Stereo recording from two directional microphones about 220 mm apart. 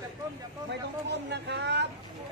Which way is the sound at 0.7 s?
50° right (ahead or behind).